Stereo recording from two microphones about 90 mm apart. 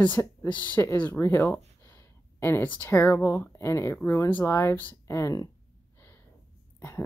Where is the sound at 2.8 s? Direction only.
30° left (ahead or behind).